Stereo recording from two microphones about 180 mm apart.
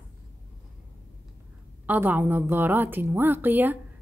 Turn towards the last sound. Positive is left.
turn(degrees=-10)  # may be behind; listen again after turning